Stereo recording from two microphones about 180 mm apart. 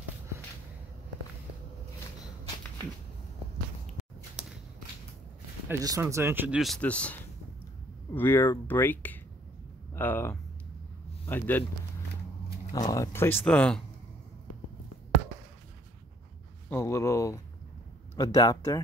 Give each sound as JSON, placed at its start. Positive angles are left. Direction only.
{"t": 5.7, "sound": "speech", "side_deg": -20}
{"t": 6.6, "sound": "speech", "side_deg": 5}
{"t": 12.7, "sound": "speech", "side_deg": 20}
{"t": 16.6, "sound": "speech", "side_deg": 15}